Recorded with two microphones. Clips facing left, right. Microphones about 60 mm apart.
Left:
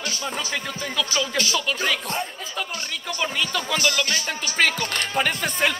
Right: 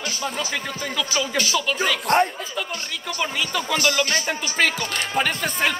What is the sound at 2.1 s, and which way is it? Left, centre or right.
Speech, right.